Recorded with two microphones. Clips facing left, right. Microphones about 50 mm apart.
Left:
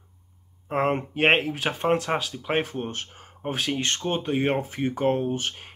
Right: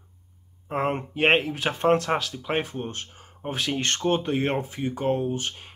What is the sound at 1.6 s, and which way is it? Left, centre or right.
Speech, centre.